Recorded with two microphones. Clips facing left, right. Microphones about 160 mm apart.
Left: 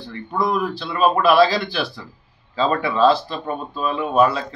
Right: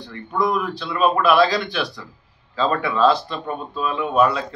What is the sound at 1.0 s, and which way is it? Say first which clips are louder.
Speech: left 1 dB; 30° left (ahead or behind).